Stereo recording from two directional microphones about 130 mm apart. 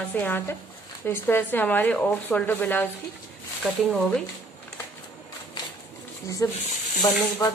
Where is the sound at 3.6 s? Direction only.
Centre (ahead or behind).